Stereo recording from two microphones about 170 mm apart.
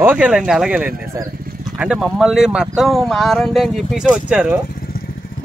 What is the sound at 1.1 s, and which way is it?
Speech, 20° right (ahead or behind).